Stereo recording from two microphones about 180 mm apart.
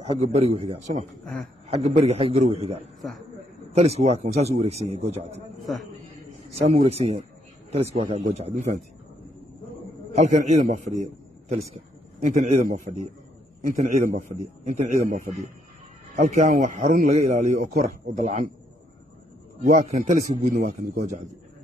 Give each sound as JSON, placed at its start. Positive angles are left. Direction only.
{"t": 0.0, "sound": "a man's voice", "side_deg": -35}
{"t": 1.2, "sound": "a man's voice", "side_deg": 5}
{"t": 1.7, "sound": "a man's voice", "side_deg": -35}
{"t": 3.0, "sound": "a man's voice", "side_deg": 0}
{"t": 3.7, "sound": "a man's voice", "side_deg": -35}
{"t": 5.7, "sound": "a man's voice", "side_deg": 0}
{"t": 6.6, "sound": "a man's voice", "side_deg": -35}
{"t": 10.1, "sound": "a man's voice", "side_deg": -40}
{"t": 19.6, "sound": "a man's voice", "side_deg": -40}